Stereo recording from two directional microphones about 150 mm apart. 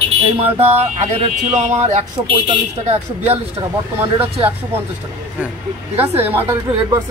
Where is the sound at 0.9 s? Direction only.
50° right (ahead or behind).